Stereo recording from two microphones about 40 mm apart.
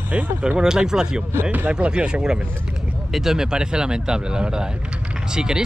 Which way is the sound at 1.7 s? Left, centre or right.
Right.